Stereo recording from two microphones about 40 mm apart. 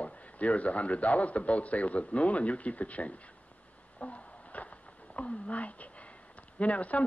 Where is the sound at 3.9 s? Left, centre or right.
Left.